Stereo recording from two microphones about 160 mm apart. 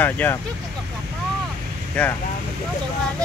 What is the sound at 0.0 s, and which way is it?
Speech, 10° left (ahead or behind).